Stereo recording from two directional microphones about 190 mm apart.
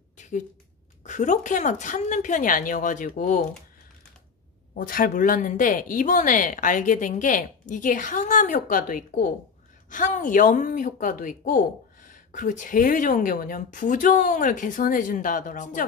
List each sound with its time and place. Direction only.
1.0 s a woman's voice: 40° left (ahead or behind)
4.7 s speech: 45° left (ahead or behind)